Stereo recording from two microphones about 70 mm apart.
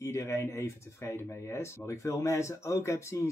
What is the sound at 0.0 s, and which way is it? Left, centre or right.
Speech, left.